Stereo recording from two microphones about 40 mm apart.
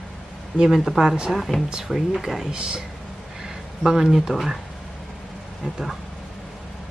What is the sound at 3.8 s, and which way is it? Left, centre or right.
Speech, centre.